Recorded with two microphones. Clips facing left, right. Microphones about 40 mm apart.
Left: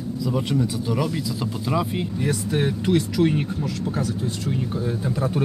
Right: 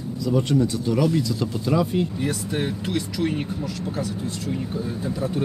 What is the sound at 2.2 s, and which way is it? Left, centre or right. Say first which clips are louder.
Speech: left 2 dB; centre.